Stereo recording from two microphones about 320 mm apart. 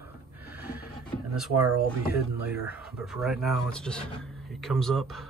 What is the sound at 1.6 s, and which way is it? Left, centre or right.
Speech, right.